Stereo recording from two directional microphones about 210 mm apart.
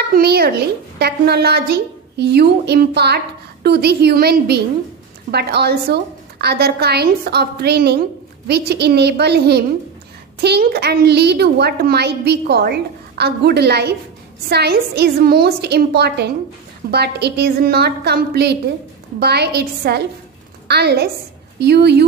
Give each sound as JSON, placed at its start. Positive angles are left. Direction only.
{"t": 0.1, "sound": "a woman's voice", "side_deg": -50}